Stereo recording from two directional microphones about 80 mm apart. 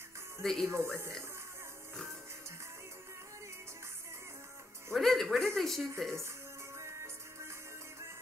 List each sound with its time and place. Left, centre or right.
0.4 s speech: centre
0.7 s speech: right
4.9 s speech: centre
6.8 s music: right